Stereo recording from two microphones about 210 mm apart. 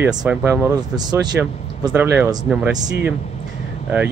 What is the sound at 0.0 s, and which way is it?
Speech, 5° right (ahead or behind).